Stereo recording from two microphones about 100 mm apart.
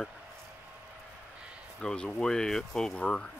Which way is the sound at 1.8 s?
5° left (ahead or behind).